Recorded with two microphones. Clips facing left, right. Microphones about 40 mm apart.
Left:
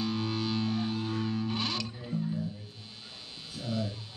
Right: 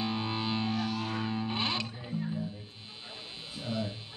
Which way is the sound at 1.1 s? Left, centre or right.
Right.